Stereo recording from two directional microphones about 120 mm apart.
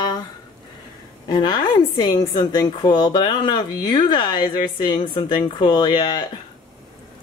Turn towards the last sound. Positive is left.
turn(degrees=35)  # may be behind; listen again after turning